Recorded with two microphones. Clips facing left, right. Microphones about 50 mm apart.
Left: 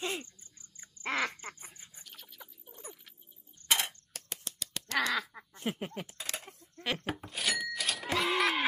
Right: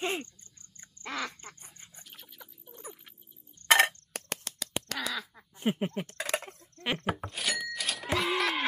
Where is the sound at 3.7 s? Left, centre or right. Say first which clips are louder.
Right 11 dB; right.